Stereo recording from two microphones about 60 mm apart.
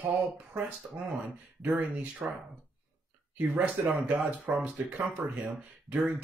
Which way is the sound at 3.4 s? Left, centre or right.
Centre.